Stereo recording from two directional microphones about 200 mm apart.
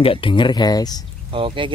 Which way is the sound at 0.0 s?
25° left (ahead or behind).